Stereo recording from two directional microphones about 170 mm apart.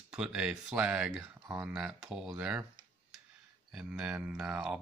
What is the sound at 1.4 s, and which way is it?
Speech, 20° right (ahead or behind).